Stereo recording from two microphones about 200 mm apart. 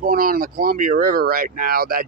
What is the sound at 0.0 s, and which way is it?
Speech, 45° right (ahead or behind).